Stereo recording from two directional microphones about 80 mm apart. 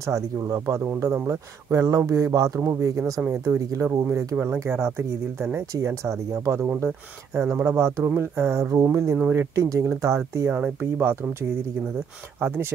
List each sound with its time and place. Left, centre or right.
0.0 s speech: right
10.5 s speech: right
12.4 s speech: right